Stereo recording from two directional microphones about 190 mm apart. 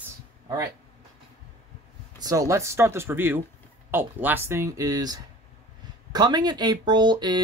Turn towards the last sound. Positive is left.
turn(degrees=-25)  # may be behind; listen again after turning